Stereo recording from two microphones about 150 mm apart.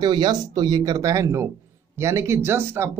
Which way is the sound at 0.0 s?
30° right (ahead or behind).